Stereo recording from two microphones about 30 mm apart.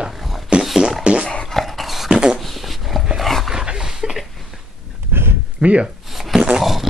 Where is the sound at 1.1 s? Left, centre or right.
Right.